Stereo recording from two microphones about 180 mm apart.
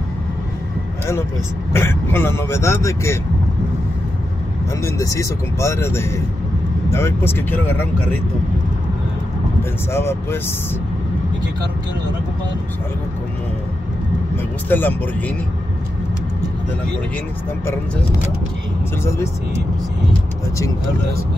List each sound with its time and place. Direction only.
1.7 s speech: 15° left (ahead or behind)
4.8 s speech: 20° left (ahead or behind)
9.9 s speech: 15° left (ahead or behind)
14.3 s speech: 10° left (ahead or behind)